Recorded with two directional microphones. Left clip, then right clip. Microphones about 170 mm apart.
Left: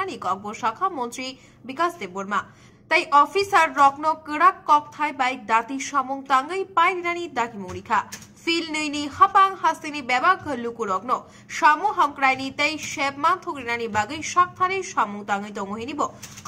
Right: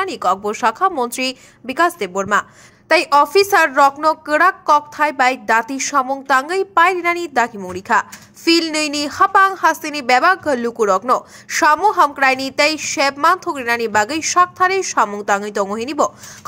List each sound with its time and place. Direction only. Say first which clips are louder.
0.0 s a woman's voice: right 9 dB; 35° right (ahead or behind)